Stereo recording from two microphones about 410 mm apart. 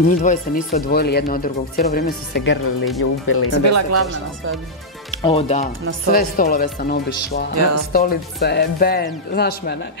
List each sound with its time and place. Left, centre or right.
0.2 s speech: centre
3.6 s speech: right
5.2 s speech: centre